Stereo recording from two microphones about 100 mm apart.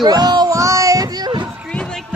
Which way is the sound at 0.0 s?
45° right (ahead or behind).